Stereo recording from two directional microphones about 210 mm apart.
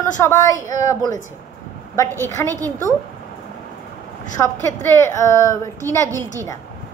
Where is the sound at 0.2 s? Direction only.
15° left (ahead or behind).